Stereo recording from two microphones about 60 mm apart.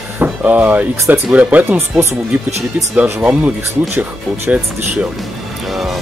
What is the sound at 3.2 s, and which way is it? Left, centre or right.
Speech, right.